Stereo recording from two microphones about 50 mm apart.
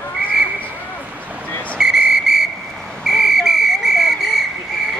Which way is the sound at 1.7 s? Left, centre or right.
Centre.